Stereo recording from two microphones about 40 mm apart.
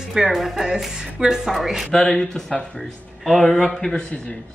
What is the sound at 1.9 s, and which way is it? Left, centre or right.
A man's voice, centre.